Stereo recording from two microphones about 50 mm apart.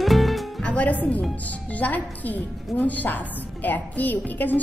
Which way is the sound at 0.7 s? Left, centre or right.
Left.